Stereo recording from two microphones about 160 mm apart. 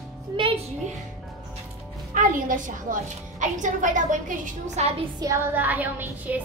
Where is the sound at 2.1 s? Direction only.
55° right (ahead or behind).